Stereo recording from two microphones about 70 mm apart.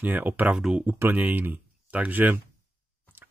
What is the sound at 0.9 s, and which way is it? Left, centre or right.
Speech, right.